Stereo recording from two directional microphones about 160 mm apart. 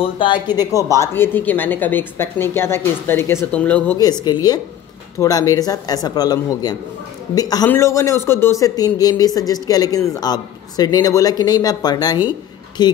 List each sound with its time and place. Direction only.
0.0 s speech: 30° left (ahead or behind); by 3.9 s 10° left (ahead or behind)
4.0 s speech: 25° left (ahead or behind)